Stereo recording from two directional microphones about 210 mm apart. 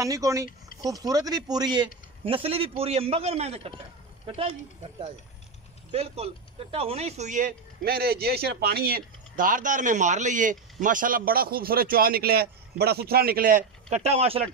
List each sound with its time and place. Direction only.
0.0 s a man's voice: 15° right (ahead or behind)
5.9 s speech: 30° right (ahead or behind)